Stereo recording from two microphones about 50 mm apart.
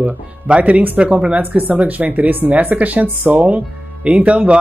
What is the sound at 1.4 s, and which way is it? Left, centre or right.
Speech, right.